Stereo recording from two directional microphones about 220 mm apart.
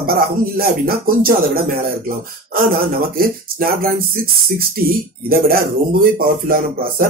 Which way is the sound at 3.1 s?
40° right (ahead or behind).